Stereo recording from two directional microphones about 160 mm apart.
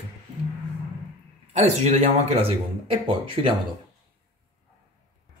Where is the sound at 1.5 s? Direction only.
45° right (ahead or behind).